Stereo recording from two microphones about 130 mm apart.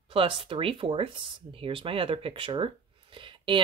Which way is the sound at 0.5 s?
45° right (ahead or behind).